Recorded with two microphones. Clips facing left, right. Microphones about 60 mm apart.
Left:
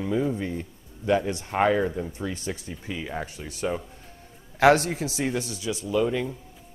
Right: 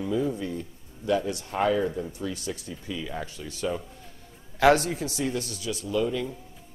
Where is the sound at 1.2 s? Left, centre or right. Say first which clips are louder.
Left 3 dB; left.